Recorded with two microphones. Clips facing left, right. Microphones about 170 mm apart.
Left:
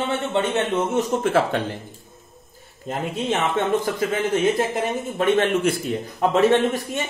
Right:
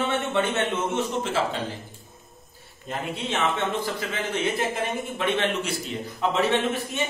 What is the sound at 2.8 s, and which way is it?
Speech, 45° left (ahead or behind).